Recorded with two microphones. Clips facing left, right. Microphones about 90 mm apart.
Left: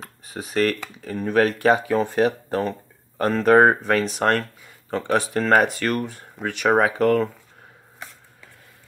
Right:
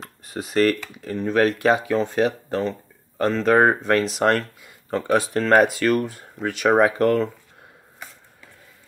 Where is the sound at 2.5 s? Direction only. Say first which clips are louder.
Even; 15° left (ahead or behind).